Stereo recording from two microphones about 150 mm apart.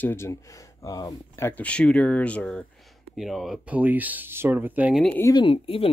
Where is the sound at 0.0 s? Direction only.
15° left (ahead or behind); by 5.0 s 10° right (ahead or behind).